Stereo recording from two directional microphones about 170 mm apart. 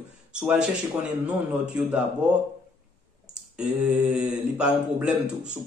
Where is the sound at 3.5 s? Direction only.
5° right (ahead or behind).